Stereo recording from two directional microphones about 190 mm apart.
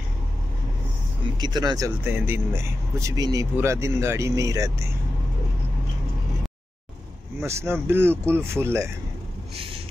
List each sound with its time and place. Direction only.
1.4 s speech: 20° right (ahead or behind)
7.4 s speech: 15° right (ahead or behind)